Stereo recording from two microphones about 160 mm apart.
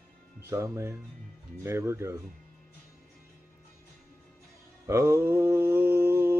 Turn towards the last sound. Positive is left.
turn(degrees=-15)  # may be behind; listen again after turning